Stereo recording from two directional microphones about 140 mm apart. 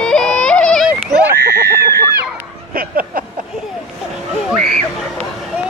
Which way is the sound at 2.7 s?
90° right.